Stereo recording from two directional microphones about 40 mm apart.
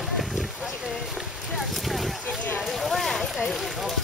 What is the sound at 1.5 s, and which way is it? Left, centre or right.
Speech, centre.